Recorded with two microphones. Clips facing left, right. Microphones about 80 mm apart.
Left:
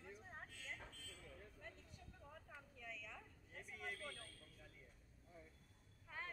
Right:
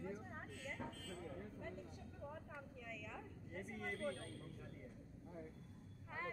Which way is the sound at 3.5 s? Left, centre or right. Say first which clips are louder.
Right 5 dB; right.